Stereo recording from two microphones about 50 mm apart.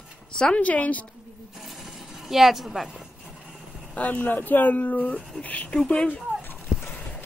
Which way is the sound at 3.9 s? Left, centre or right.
Left.